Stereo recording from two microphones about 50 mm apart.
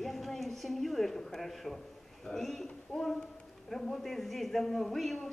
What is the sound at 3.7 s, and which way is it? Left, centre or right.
A man's voice, centre.